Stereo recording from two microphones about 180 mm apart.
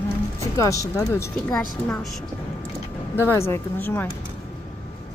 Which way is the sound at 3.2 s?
15° left (ahead or behind).